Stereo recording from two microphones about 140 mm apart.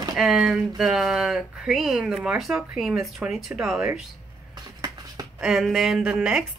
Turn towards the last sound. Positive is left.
turn(degrees=-5)  # may be behind; listen again after turning